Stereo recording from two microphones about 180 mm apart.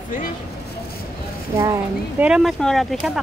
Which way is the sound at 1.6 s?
10° right (ahead or behind).